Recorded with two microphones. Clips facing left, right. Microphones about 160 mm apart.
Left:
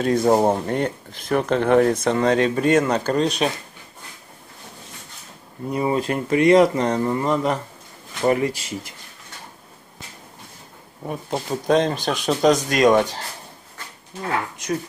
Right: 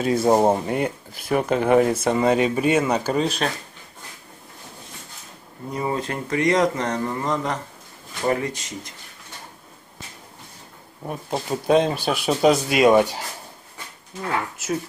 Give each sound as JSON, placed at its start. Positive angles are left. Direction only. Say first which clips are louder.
{"t": 0.0, "sound": "speech", "louder": "even", "side_deg": -5}
{"t": 5.7, "sound": "speech", "louder": "left 4 dB", "side_deg": 15}
{"t": 8.3, "sound": "speech", "louder": "left 3 dB", "side_deg": 30}
{"t": 11.1, "sound": "speech", "louder": "left 1 dB", "side_deg": 0}
{"t": 14.6, "sound": "speech", "louder": "left 1 dB", "side_deg": -5}